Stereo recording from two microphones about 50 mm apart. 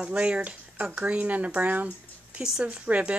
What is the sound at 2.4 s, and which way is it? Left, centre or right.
Speech, centre.